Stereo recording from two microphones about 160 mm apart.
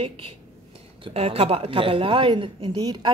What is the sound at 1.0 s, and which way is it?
A woman's voice, 40° right (ahead or behind).